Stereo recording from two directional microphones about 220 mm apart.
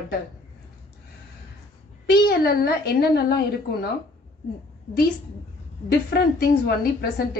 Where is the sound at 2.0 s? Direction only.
45° left (ahead or behind).